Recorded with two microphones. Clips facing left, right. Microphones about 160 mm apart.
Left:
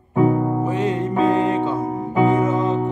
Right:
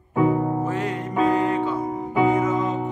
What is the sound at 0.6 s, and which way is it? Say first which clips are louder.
Music: left 5 dB; 20° left (ahead or behind).